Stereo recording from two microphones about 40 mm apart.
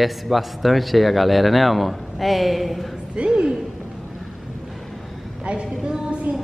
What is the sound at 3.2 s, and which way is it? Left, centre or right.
Speech, centre.